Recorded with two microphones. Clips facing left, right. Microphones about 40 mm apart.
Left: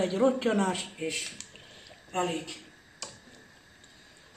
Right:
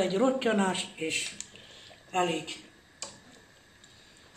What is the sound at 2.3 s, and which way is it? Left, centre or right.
Speech, right.